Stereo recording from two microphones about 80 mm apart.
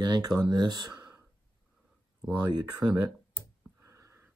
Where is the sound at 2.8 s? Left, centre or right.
Centre.